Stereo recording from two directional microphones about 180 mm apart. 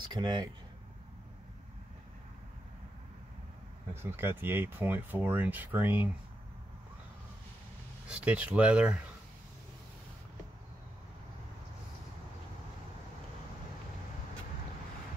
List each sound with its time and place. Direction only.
0.1 s speech: 25° right (ahead or behind)
3.9 s speech: 15° right (ahead or behind)
8.1 s speech: 5° right (ahead or behind)